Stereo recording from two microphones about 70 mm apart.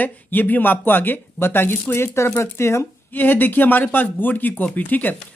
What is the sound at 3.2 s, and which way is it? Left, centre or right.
A woman's voice, left.